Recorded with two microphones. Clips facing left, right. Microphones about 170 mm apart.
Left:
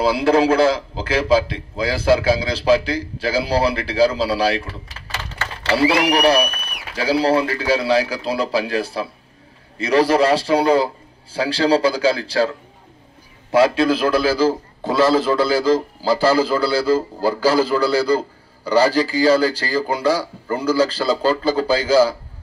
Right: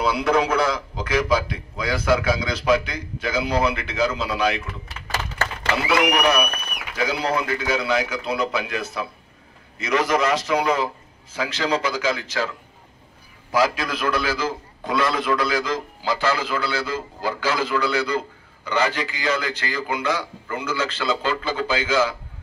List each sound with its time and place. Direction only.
0.0 s a man's voice: 30° left (ahead or behind)